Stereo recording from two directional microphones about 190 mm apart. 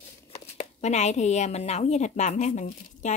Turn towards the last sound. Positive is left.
turn(degrees=40)  # may be behind; listen again after turning